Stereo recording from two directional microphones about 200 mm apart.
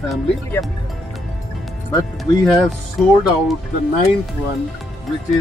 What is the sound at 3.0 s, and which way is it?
Speech, centre (ahead or behind).